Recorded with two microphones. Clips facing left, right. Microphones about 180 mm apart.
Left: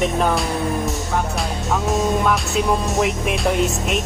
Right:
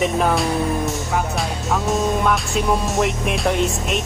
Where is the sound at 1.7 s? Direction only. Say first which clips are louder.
Even; centre (ahead or behind).